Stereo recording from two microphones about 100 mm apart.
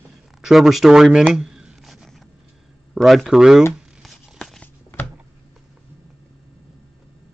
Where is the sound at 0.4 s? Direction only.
Centre (ahead or behind).